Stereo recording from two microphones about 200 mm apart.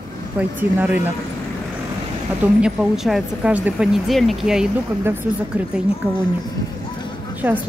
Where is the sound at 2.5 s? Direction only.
5° right (ahead or behind).